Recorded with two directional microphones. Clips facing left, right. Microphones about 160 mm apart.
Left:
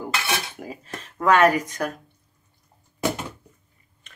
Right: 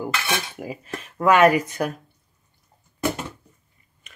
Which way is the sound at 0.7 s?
10° right (ahead or behind).